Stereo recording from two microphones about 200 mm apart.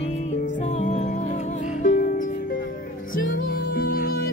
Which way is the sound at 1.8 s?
45° left (ahead or behind).